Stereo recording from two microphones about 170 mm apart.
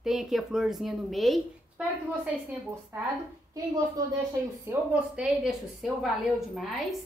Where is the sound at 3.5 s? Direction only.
20° right (ahead or behind).